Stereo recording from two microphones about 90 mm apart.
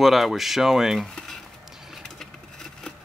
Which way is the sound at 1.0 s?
5° left (ahead or behind).